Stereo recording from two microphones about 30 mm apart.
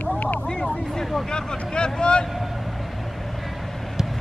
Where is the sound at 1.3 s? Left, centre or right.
Left.